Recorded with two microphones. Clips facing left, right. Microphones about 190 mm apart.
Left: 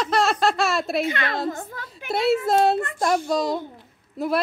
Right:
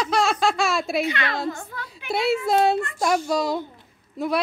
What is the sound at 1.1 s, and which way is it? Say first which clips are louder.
Speech: left 1 dB; 50° left (ahead or behind).